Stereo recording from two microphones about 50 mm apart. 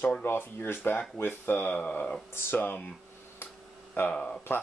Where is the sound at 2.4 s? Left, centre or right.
Left.